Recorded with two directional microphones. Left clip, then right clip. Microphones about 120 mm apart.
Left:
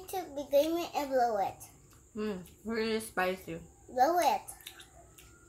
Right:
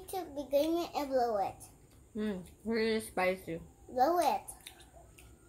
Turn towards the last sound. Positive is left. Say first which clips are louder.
# left 2 dB
turn(degrees=-20)  # may be behind; listen again after turning